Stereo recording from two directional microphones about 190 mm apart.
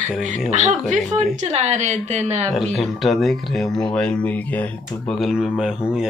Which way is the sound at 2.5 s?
Centre (ahead or behind).